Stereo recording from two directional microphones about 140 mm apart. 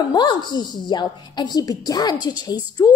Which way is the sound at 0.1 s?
30° left (ahead or behind).